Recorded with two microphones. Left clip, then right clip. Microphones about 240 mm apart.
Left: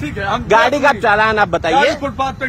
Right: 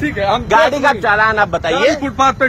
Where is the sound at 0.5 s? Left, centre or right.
Left.